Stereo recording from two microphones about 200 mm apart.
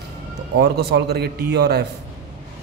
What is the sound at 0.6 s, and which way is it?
A man's voice, 55° right (ahead or behind).